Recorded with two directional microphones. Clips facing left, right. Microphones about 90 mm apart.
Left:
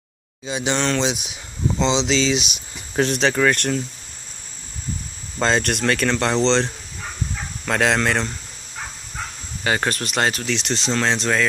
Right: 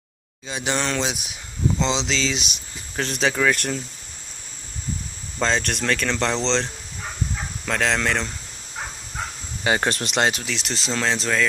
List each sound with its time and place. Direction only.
0.5 s speech: 5° left (ahead or behind)
0.7 s speech: 5° right (ahead or behind)
5.4 s speech: 5° left (ahead or behind)
9.6 s speech: 15° right (ahead or behind)
10.4 s speech: 5° right (ahead or behind)